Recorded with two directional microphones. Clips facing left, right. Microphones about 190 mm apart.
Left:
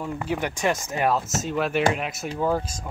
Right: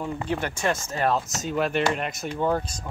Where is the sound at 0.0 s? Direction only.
5° left (ahead or behind).